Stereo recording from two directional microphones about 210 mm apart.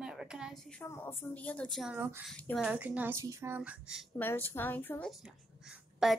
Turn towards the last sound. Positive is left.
turn(degrees=0)  # may be behind; listen again after turning